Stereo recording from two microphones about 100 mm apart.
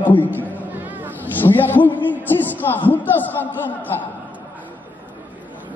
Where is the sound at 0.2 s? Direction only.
20° left (ahead or behind).